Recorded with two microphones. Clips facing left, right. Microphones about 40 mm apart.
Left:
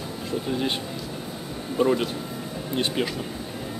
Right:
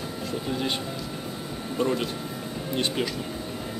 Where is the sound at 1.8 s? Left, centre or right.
Centre.